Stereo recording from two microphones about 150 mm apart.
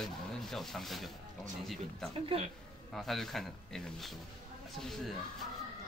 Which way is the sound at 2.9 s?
Centre (ahead or behind).